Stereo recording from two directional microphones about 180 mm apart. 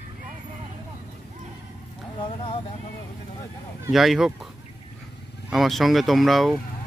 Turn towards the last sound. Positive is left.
turn(degrees=0)  # may be behind; listen again after turning